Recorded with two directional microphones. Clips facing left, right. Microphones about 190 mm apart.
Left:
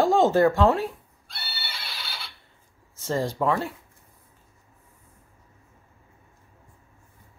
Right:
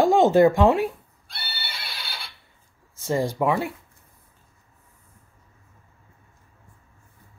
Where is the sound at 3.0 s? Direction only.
15° right (ahead or behind).